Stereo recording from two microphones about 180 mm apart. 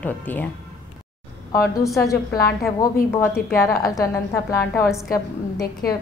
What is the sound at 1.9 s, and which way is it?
A woman's voice, 20° left (ahead or behind).